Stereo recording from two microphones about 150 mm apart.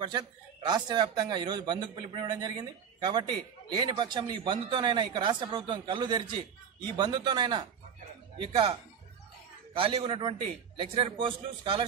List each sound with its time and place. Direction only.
0.0 s a man's voice: 30° right (ahead or behind)
9.8 s a man's voice: 35° right (ahead or behind)